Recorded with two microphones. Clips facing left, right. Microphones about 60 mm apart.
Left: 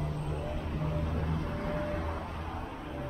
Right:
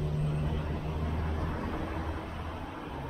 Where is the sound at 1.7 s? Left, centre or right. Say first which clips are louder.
Left 2 dB; left.